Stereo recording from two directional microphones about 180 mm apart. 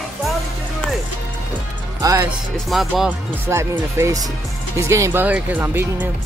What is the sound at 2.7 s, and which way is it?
Speech, centre (ahead or behind).